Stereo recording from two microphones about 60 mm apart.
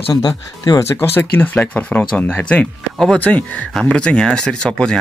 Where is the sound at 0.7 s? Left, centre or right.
Left.